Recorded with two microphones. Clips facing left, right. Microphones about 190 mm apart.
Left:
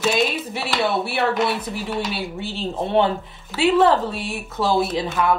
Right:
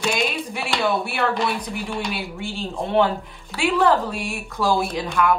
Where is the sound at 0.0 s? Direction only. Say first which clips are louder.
Left 3 dB; 5° left (ahead or behind).